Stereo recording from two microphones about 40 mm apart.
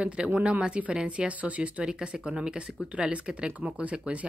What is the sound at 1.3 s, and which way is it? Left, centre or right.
Speech, right.